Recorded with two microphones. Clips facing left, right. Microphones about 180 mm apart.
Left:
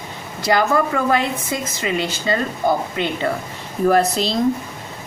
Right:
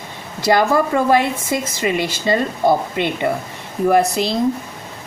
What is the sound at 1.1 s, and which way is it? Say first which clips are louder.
A woman's voice: right 3 dB; 25° right (ahead or behind).